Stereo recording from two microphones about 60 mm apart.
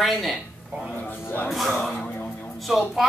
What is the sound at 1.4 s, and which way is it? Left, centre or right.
Speech, centre.